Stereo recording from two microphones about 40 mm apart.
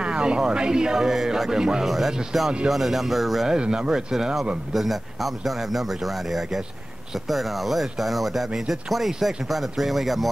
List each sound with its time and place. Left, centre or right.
0.0 s music: right
0.4 s a man's voice: right
1.9 s speech: centre
3.4 s speech: centre
4.1 s a man's voice: centre